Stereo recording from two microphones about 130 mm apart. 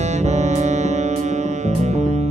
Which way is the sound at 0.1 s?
60° right (ahead or behind).